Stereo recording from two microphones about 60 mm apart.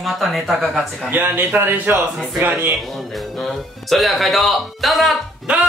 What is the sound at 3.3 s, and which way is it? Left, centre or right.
Speech, centre.